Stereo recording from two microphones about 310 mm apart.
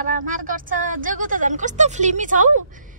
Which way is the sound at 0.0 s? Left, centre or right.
Right.